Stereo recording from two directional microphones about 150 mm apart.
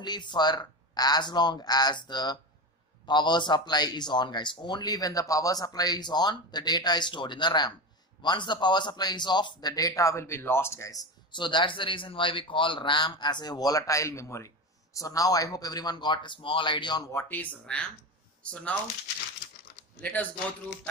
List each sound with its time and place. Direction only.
0.0 s a man's voice: 30° left (ahead or behind)
17.1 s speech: 10° left (ahead or behind)
20.0 s speech: 10° left (ahead or behind)